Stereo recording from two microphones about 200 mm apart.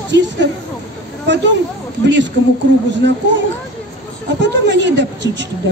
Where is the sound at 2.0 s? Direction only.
60° right (ahead or behind).